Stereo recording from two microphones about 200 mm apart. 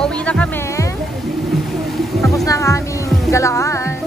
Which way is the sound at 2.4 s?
15° left (ahead or behind).